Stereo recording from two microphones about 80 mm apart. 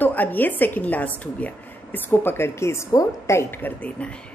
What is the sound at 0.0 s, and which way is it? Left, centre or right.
A woman's voice, left.